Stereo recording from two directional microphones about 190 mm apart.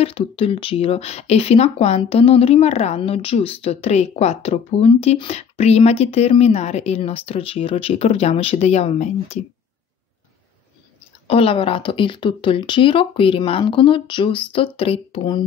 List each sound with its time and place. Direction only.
0.0 s speech: 30° left (ahead or behind)
11.2 s speech: 30° left (ahead or behind)